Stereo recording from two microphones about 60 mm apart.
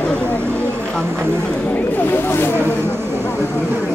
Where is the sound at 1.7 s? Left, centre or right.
Left.